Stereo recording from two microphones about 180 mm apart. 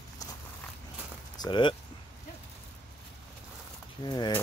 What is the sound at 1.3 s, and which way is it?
Speech, 25° left (ahead or behind).